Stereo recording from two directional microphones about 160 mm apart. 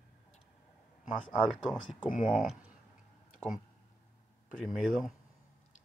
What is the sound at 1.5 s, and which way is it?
Speech, centre (ahead or behind).